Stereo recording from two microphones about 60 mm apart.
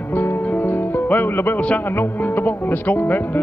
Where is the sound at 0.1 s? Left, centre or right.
Left.